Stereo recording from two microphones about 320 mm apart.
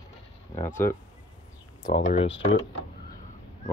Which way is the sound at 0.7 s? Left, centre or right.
Centre.